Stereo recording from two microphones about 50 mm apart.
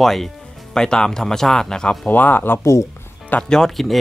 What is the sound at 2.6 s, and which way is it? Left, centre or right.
Speech, left.